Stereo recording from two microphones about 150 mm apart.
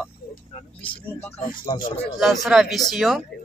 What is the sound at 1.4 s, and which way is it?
Speech, 30° left (ahead or behind).